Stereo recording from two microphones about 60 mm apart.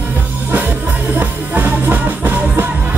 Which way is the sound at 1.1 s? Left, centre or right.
Right.